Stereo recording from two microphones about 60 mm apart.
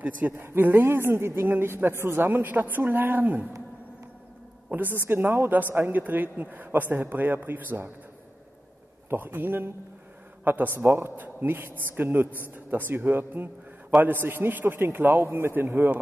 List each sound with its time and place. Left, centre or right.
0.4 s a man's voice: right
4.6 s a man's voice: right
9.1 s a man's voice: right